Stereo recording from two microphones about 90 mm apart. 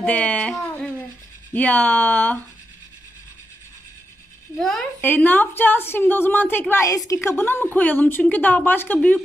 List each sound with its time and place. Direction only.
0.0 s music: 15° left (ahead or behind)
0.7 s a sound: 10° left (ahead or behind)
1.5 s a woman's voice: 20° left (ahead or behind)
4.6 s speech: 5° left (ahead or behind)
5.0 s a woman's voice: 20° left (ahead or behind)
6.7 s a woman's voice: 35° left (ahead or behind); by 9.2 s 20° left (ahead or behind)